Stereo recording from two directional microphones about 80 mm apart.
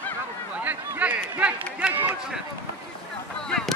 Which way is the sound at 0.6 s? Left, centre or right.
Right.